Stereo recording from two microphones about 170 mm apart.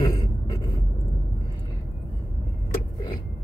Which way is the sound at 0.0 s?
20° left (ahead or behind).